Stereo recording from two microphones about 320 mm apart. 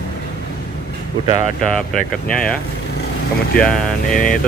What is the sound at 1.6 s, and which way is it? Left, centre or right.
Speech, centre.